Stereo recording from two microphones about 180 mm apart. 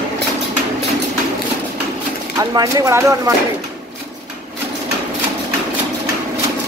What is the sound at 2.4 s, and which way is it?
Speech, 20° right (ahead or behind).